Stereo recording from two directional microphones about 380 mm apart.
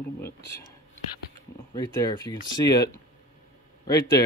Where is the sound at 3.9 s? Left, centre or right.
Centre.